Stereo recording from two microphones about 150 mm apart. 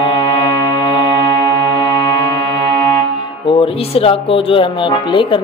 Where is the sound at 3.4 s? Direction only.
35° left (ahead or behind).